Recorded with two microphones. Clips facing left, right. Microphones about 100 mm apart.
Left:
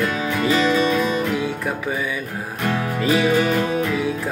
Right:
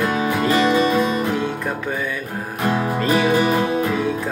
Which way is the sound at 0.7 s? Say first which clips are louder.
Right 1 dB; 35° right (ahead or behind).